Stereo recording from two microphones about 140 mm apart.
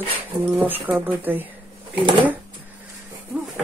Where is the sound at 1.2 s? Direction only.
15° right (ahead or behind).